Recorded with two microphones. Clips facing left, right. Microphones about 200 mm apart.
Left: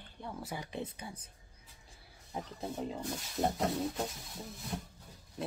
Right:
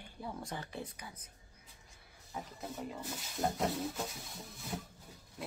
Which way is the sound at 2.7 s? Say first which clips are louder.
Left 4 dB; 25° left (ahead or behind).